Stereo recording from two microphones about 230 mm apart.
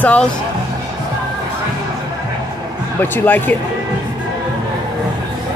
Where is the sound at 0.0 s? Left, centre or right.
Centre.